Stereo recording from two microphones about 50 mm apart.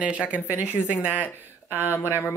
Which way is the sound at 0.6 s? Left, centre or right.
Left.